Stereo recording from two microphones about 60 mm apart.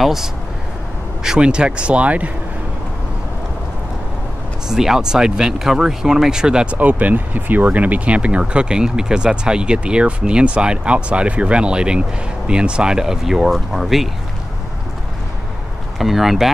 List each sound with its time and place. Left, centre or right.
0.0 s speech: centre; by 2.3 s right
4.6 s speech: centre
16.0 s speech: centre